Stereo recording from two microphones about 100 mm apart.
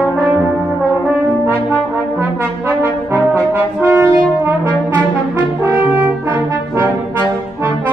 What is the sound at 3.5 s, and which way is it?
Brass instrument, 20° right (ahead or behind).